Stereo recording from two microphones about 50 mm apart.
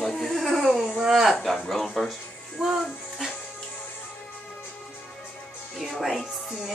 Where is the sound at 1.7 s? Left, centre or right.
Centre.